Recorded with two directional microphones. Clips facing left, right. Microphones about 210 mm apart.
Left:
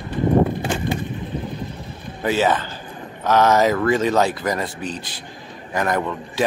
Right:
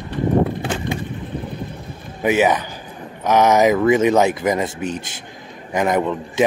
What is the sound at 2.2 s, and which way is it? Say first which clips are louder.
Speech: right 3 dB; 15° right (ahead or behind).